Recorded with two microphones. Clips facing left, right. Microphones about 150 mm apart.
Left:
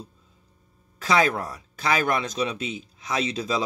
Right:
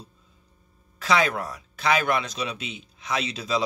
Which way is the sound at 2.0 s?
45° left (ahead or behind).